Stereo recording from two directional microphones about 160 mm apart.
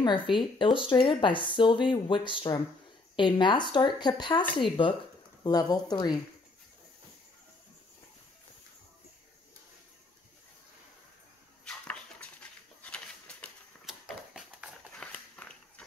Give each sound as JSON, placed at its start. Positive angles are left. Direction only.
{"t": 0.0, "sound": "speech", "side_deg": 30}
{"t": 11.6, "sound": "dog", "side_deg": 10}
{"t": 12.8, "sound": "a sound", "side_deg": 5}